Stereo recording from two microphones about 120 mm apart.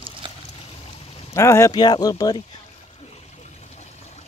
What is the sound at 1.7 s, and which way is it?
Speech, 35° left (ahead or behind).